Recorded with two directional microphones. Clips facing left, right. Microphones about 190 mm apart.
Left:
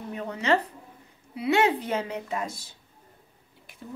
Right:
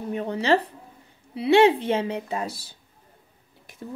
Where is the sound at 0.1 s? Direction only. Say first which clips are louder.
Right 3 dB; 30° right (ahead or behind).